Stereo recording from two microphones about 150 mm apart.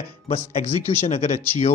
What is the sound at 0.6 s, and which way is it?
Speech, 25° right (ahead or behind).